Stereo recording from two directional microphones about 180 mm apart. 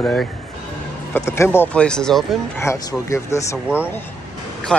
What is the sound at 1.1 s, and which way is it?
Speech, 15° left (ahead or behind).